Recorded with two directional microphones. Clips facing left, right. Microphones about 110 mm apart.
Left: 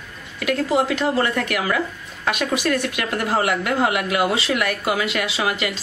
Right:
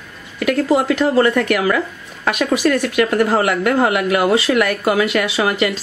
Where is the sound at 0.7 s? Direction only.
45° right (ahead or behind).